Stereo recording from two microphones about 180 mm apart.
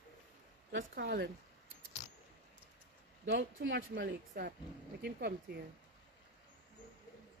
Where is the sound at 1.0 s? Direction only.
65° right (ahead or behind).